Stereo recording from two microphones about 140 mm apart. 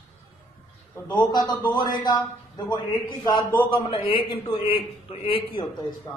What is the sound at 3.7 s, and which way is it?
A man's voice, 40° left (ahead or behind).